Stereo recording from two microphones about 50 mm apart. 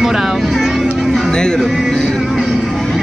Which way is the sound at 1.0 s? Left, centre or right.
Centre.